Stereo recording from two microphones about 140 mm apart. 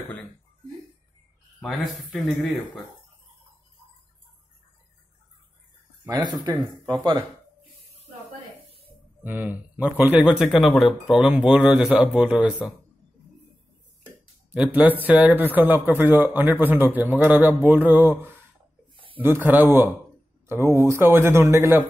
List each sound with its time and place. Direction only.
1.6 s speech: 5° left (ahead or behind)
6.0 s speech: 30° right (ahead or behind)
9.2 s speech: 10° right (ahead or behind)
14.0 s speech: 10° right (ahead or behind)